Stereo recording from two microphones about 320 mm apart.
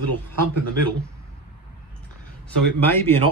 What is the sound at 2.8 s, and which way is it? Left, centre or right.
Speech, centre.